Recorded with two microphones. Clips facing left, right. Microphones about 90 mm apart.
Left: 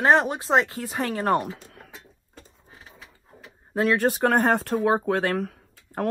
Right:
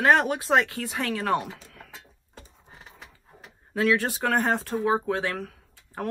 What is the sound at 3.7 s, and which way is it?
Speech, 35° left (ahead or behind).